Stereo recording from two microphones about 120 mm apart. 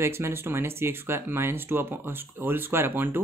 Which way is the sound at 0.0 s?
20° right (ahead or behind).